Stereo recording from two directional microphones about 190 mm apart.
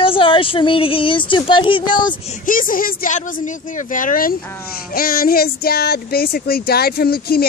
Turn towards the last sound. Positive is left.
turn(degrees=55)  # may be behind; listen again after turning